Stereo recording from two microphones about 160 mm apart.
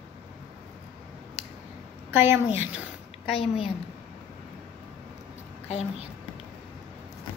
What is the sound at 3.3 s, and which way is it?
Speech, 35° left (ahead or behind).